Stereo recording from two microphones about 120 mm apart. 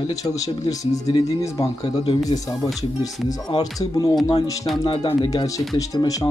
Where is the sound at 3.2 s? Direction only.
30° left (ahead or behind).